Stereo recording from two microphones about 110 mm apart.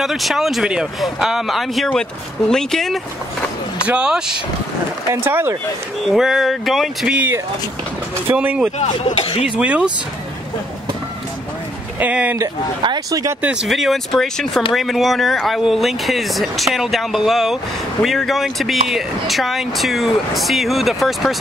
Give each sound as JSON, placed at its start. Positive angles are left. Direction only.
{"t": 0.0, "sound": "speech", "side_deg": 0}
{"t": 3.8, "sound": "speech", "side_deg": -10}
{"t": 5.1, "sound": "speech", "side_deg": -20}
{"t": 6.1, "sound": "speech", "side_deg": 0}
{"t": 8.3, "sound": "speech", "side_deg": -15}
{"t": 8.7, "sound": "speech", "side_deg": 75}
{"t": 9.6, "sound": "speech", "side_deg": -10}
{"t": 12.0, "sound": "speech", "side_deg": -15}
{"t": 12.8, "sound": "speech", "side_deg": -35}
{"t": 13.4, "sound": "speech", "side_deg": -10}